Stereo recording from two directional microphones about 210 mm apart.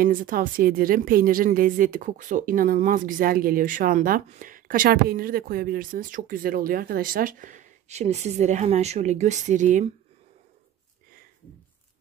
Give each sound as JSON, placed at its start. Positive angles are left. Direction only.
{"t": 0.0, "sound": "speech", "side_deg": -40}